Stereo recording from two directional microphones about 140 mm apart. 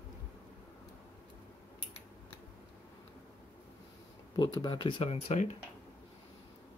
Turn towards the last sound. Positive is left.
turn(degrees=55)  # may be behind; listen again after turning